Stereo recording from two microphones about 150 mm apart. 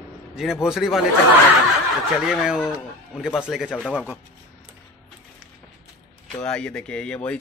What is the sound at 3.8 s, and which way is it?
Speech, 5° left (ahead or behind).